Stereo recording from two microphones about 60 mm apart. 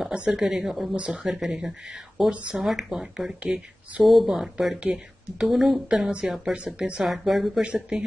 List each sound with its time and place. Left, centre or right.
0.2 s speech: centre
0.5 s a woman's voice: centre
5.9 s speech: centre
6.2 s a woman's voice: centre
7.1 s a woman's voice: centre
7.6 s speech: centre